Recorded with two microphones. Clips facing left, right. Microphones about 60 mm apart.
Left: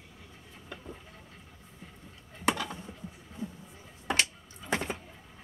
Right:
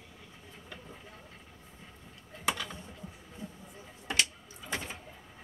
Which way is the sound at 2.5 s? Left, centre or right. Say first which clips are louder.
Left 4 dB; left.